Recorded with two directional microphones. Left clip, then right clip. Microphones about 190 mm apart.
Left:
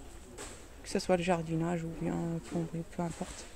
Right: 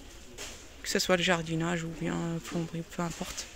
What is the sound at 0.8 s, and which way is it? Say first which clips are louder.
Speech: right 4 dB; centre (ahead or behind).